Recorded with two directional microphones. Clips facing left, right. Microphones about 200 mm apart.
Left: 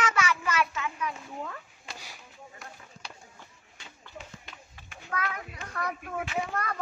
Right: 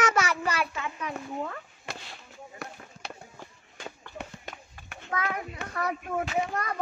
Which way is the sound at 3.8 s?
55° right (ahead or behind).